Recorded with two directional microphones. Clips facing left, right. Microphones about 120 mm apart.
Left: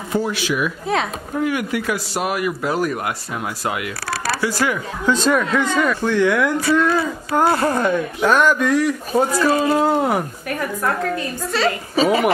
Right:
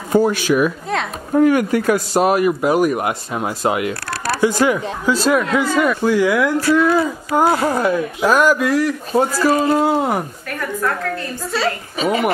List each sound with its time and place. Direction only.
0.1 s speech: 45° right (ahead or behind)
2.2 s speech: 30° right (ahead or behind)
2.6 s speech: 15° right (ahead or behind)
5.0 s speech: 5° right (ahead or behind)
11.9 s a woman's voice: 35° left (ahead or behind)